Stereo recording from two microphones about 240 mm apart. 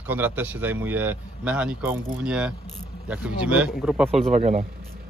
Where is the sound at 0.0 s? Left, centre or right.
Centre.